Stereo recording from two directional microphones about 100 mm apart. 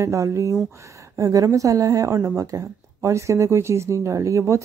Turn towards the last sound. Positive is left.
turn(degrees=-30)  # may be behind; listen again after turning